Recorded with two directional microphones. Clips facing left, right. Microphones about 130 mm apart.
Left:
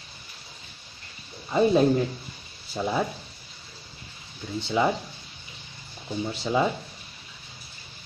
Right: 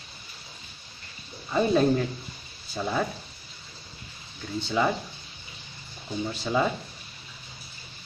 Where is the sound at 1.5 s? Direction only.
15° left (ahead or behind).